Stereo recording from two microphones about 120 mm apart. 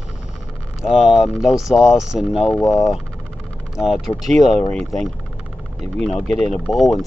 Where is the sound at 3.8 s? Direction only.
Centre (ahead or behind).